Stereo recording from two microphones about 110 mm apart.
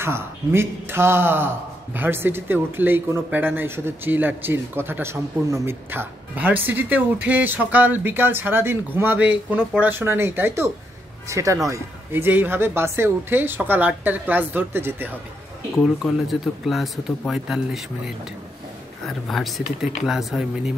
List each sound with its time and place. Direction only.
0.0 s speech: 20° right (ahead or behind)
15.8 s speech: centre (ahead or behind)